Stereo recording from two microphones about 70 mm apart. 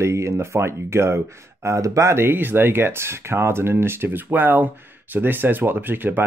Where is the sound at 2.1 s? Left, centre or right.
Right.